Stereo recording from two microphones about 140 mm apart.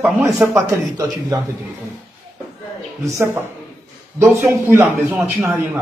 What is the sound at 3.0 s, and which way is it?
Speech, 20° right (ahead or behind).